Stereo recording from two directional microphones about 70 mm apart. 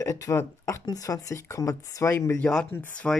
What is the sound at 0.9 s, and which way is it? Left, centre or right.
Speech, left.